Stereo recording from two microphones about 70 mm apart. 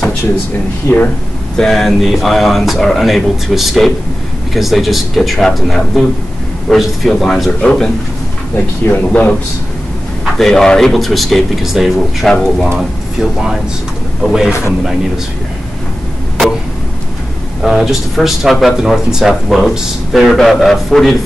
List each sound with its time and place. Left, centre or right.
0.8 s speech: left
1.6 s speech: centre
7.6 s speech: centre
10.3 s speech: centre
17.6 s speech: centre